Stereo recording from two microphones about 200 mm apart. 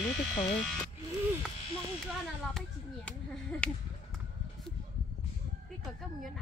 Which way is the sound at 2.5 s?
5° left (ahead or behind).